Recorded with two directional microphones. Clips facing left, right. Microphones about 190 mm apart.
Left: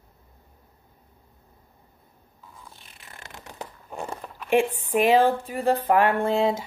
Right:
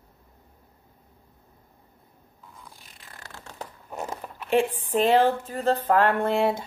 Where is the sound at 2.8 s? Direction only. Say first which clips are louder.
Left 1 dB; 25° left (ahead or behind).